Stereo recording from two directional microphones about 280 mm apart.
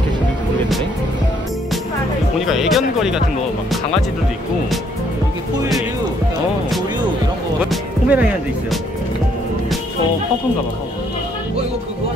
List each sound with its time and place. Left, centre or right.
2.3 s speech: centre
7.7 s speech: centre